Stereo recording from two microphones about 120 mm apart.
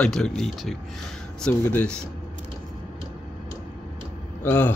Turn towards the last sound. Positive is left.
turn(degrees=15)  # may be behind; listen again after turning